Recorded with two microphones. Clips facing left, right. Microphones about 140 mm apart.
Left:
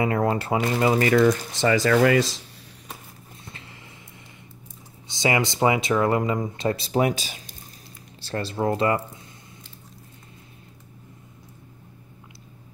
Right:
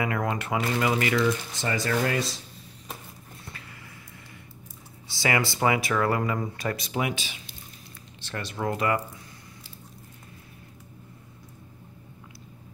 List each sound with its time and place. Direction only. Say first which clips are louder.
0.0 s speech: left 5 dB; 30° left (ahead or behind)
1.5 s speech: left 8 dB; 85° left
5.0 s speech: left 3 dB; 20° left (ahead or behind)